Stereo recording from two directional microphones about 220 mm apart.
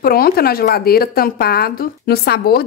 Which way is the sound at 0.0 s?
45° left (ahead or behind).